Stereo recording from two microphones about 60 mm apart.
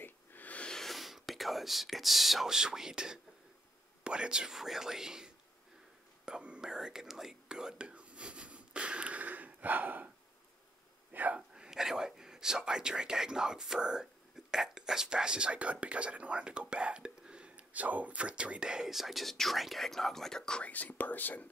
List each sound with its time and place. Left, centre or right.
0.0 s a sound: left
0.7 s whispering: centre
4.0 s speech: centre
6.2 s whispering: centre
11.1 s a sound: right
11.5 s speech: centre
20.6 s speech: left